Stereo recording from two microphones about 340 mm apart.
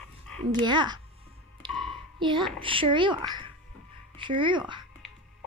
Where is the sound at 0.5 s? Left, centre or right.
Centre.